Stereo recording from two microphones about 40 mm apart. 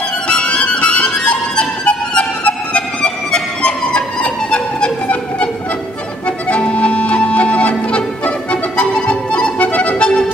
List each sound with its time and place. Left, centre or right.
0.3 s music: left
5.0 s a sound: left
6.2 s accordion: left
8.5 s music: left
9.6 s accordion: left